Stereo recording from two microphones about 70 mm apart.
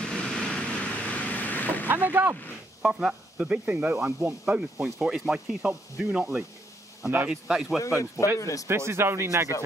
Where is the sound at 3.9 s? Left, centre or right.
Right.